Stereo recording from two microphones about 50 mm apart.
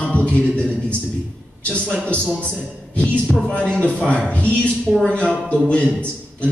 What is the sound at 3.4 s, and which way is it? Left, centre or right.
A man's voice, left.